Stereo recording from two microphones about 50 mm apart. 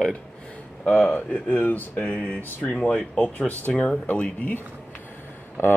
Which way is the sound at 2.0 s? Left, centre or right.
Left.